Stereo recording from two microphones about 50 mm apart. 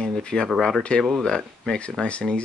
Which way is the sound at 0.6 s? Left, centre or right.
Centre.